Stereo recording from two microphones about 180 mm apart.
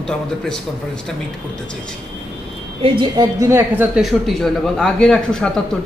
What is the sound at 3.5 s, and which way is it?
A man's voice, 5° right (ahead or behind).